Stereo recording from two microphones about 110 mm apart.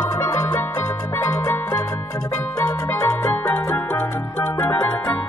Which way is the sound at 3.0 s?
20° left (ahead or behind).